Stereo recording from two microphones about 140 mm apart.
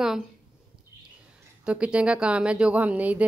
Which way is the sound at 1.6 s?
10° right (ahead or behind).